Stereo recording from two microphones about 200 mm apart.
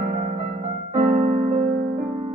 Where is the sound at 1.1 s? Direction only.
45° right (ahead or behind).